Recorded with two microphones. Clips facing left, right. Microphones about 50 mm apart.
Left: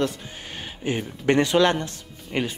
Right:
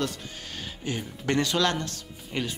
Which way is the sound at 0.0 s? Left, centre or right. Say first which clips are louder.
Left 5 dB; left.